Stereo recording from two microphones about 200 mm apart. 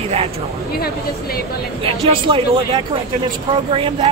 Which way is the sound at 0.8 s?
50° left (ahead or behind).